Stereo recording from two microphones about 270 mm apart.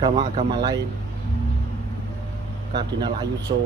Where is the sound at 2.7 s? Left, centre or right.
Centre.